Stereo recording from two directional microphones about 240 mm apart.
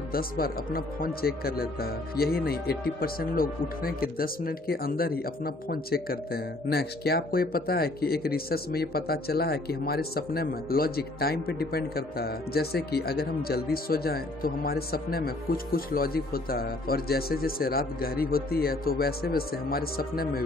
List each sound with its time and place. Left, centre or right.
0.1 s speech: left